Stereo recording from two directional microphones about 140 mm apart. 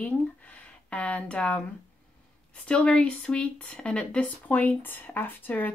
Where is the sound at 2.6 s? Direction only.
5° left (ahead or behind).